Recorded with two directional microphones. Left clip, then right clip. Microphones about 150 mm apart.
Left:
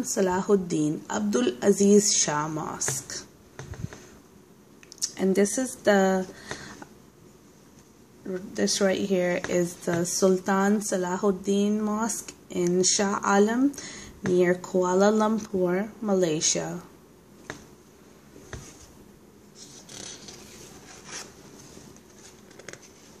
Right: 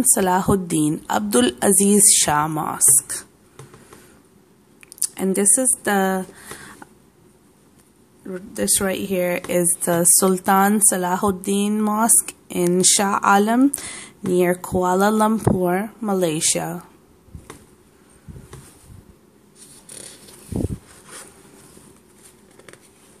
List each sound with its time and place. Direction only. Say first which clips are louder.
0.1 s speech: right 4 dB; 45° right (ahead or behind)
5.0 s speech: right 2 dB; 25° right (ahead or behind)
8.3 s speech: right 3 dB; 25° right (ahead or behind)
9.9 s speech: right 3 dB; 45° right (ahead or behind)